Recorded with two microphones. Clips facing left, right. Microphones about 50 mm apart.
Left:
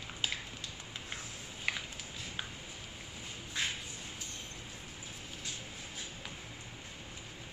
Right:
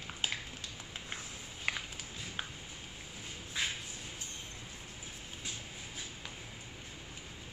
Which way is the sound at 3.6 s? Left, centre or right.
Centre.